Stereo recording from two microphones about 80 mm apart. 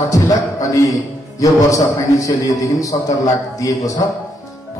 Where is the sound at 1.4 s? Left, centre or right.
Left.